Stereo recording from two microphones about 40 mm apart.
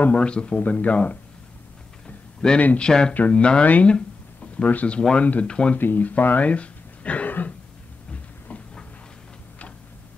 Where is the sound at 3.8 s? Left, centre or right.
Left.